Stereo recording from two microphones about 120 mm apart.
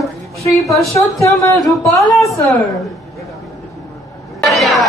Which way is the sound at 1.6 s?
Centre (ahead or behind).